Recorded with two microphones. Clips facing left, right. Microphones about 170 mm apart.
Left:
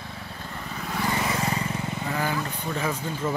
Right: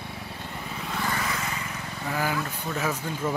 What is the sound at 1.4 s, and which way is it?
Vehicle, 30° left (ahead or behind).